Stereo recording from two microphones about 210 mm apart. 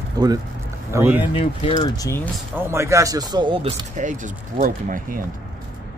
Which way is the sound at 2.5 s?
10° right (ahead or behind).